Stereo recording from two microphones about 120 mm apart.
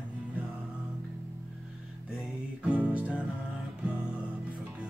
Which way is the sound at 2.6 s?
10° right (ahead or behind).